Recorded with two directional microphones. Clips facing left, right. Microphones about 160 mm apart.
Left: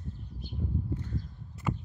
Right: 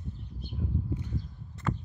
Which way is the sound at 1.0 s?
15° right (ahead or behind).